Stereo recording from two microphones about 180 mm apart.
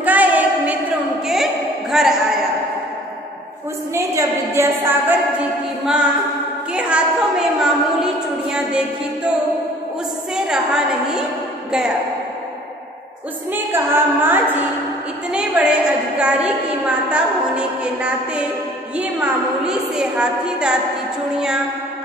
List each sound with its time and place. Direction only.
0.0 s a sound: 10° right (ahead or behind)
3.9 s a woman's voice: 15° right (ahead or behind)
10.3 s a woman's voice: 5° right (ahead or behind)
13.5 s a woman's voice: 10° right (ahead or behind)
19.6 s a woman's voice: 5° right (ahead or behind)